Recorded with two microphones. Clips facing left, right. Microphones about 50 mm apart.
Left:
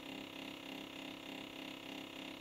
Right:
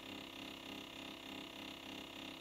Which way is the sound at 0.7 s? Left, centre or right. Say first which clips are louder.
Left 2 dB; centre.